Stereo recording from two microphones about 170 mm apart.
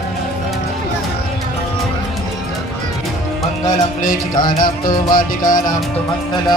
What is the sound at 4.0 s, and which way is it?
Music, 55° left (ahead or behind).